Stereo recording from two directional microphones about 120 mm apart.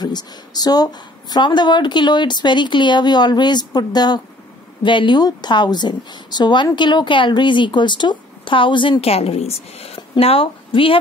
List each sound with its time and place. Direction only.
0.0 s a woman's voice: 35° left (ahead or behind)